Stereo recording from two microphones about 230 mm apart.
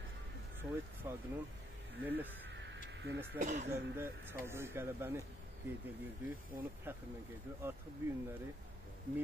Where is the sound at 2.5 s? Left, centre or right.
Right.